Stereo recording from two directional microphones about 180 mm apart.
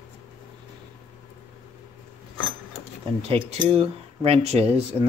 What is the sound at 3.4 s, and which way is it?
Speech, 35° right (ahead or behind).